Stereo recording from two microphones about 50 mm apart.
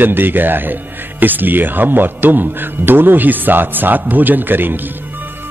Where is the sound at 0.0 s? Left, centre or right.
Right.